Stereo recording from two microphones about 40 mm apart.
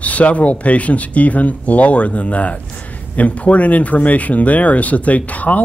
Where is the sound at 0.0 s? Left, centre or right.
Left.